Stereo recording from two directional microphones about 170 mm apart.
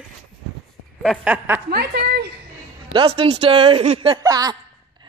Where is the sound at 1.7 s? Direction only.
70° right (ahead or behind).